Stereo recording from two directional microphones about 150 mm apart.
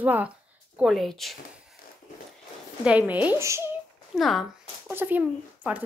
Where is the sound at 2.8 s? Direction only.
10° right (ahead or behind).